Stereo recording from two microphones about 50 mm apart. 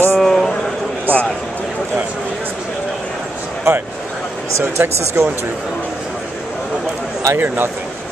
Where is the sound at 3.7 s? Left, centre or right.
Right.